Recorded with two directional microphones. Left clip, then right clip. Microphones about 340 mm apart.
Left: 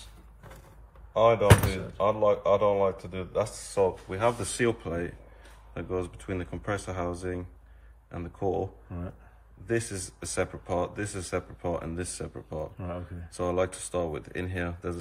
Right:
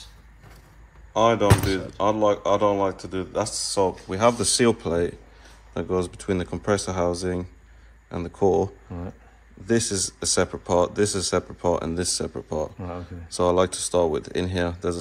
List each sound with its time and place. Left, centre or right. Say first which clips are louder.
1.1 s speech: right 2 dB; centre
9.7 s speech: right 7 dB; centre